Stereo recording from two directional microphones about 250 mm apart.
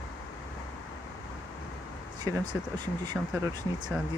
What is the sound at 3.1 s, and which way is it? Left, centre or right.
Speech, centre.